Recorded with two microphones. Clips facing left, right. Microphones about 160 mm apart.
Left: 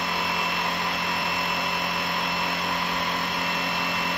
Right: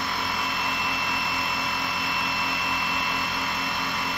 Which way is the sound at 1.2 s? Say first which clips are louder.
Left 1 dB; 20° left (ahead or behind).